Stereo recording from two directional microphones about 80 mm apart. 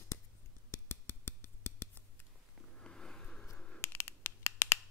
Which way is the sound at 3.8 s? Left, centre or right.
Left.